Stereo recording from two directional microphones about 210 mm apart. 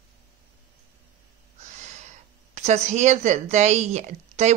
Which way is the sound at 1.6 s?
35° right (ahead or behind).